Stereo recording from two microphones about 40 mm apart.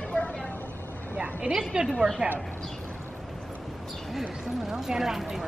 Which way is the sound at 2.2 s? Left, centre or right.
Right.